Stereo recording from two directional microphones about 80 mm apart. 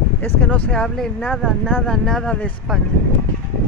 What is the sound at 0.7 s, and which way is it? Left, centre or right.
Speech, centre.